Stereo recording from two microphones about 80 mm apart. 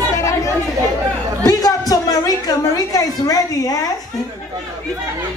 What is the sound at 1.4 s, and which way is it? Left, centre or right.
Music, left.